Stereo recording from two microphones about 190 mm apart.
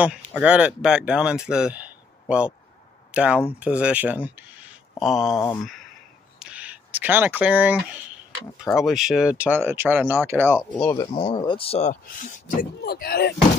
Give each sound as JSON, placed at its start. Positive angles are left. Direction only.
{"t": 0.0, "sound": "speech", "side_deg": -5}
{"t": 6.4, "sound": "a sound", "side_deg": -5}
{"t": 8.7, "sound": "speech", "side_deg": 0}
{"t": 11.1, "sound": "speech", "side_deg": 25}
{"t": 11.9, "sound": "speech", "side_deg": 45}